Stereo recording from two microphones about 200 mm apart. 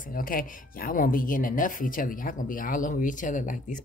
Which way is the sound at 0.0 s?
45° left (ahead or behind).